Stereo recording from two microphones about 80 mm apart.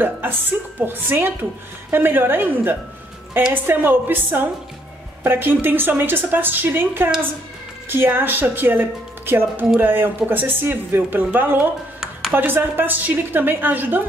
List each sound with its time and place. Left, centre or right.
0.0 s speech: right
12.0 s a sound: centre
12.4 s speech: right